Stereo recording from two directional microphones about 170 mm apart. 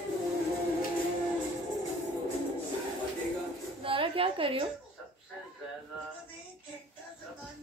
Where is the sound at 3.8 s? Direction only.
30° right (ahead or behind).